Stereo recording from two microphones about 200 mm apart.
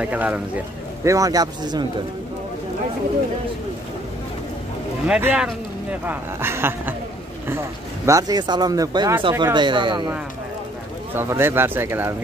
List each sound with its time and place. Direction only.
0.0 s speech: 10° right (ahead or behind)
5.0 s speech: 5° right (ahead or behind); by 10.1 s 25° right (ahead or behind)
11.1 s speech: 10° right (ahead or behind)